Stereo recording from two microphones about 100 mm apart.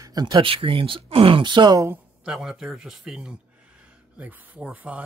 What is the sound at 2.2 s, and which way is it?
Speech, 5° right (ahead or behind).